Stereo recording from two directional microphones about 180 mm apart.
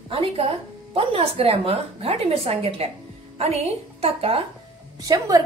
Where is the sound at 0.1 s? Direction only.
30° right (ahead or behind).